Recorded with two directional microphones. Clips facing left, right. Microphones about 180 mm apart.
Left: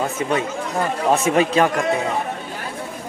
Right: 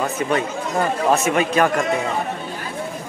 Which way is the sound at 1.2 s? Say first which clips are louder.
Left 1 dB; 30° left (ahead or behind).